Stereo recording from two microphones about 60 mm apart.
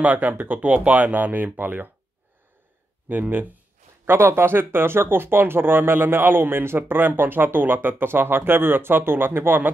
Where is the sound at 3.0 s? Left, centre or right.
Right.